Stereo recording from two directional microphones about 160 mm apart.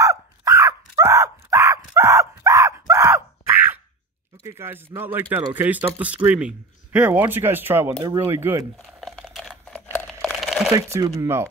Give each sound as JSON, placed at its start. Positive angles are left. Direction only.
{"t": 0.0, "sound": "a sound", "side_deg": -20}
{"t": 4.5, "sound": "speech", "side_deg": -15}
{"t": 9.0, "sound": "computer keyboard", "side_deg": 0}
{"t": 10.2, "sound": "crumpling", "side_deg": 0}
{"t": 10.7, "sound": "speech", "side_deg": -20}